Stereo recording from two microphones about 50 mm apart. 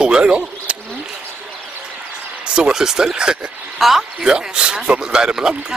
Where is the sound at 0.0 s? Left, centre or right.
Centre.